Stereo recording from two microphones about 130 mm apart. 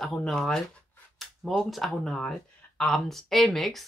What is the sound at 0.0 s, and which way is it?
Speech, centre (ahead or behind).